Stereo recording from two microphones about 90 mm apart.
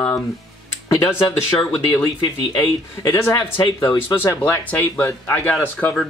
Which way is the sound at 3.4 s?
65° left (ahead or behind).